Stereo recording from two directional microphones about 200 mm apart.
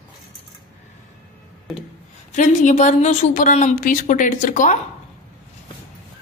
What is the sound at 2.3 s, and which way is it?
A woman's voice, 35° left (ahead or behind).